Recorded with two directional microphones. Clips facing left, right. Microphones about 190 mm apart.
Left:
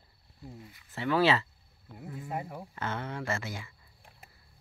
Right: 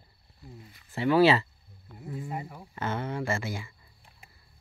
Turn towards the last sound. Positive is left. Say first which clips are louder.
# right 4 dB
turn(degrees=-10)  # may be behind; listen again after turning